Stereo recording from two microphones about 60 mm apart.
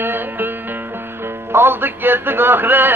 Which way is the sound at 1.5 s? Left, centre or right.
Right.